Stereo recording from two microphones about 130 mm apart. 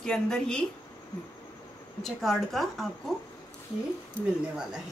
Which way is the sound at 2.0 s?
Centre (ahead or behind).